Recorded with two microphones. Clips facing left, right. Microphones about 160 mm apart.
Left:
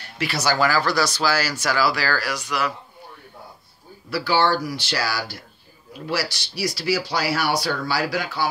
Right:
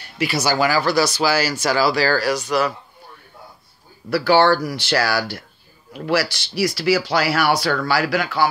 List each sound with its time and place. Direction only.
0.2 s speech: 5° right (ahead or behind)
1.5 s speech: 30° right (ahead or behind)
4.1 s speech: 60° right (ahead or behind)